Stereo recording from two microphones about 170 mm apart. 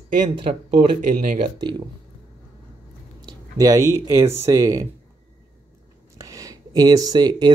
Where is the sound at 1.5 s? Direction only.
25° right (ahead or behind).